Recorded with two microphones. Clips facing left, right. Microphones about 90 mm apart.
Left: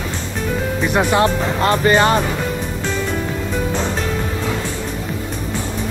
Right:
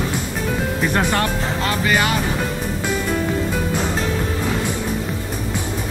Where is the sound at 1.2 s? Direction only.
35° left (ahead or behind).